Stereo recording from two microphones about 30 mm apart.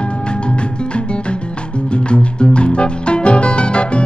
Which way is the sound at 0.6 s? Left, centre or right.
Left.